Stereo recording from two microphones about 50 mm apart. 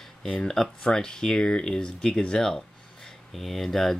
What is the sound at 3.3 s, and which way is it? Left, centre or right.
Speech, centre.